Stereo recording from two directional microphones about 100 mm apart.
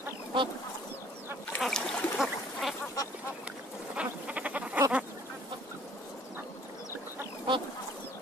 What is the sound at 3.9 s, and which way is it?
Frog, 15° right (ahead or behind).